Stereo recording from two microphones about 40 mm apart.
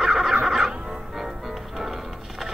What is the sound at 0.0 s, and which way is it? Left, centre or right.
Music, centre.